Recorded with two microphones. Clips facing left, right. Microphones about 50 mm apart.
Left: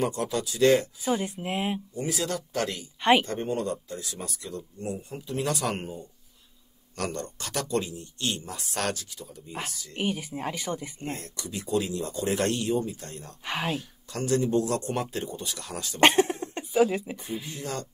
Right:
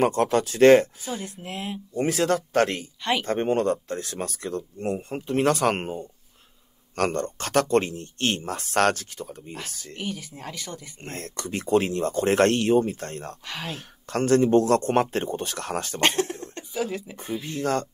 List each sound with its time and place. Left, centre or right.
0.0 s speech: right
1.0 s speech: left
2.0 s speech: right
3.0 s speech: left
3.3 s speech: right
9.9 s speech: left
11.0 s speech: right
13.5 s speech: left
13.7 s speech: right
16.0 s speech: centre
17.4 s speech: right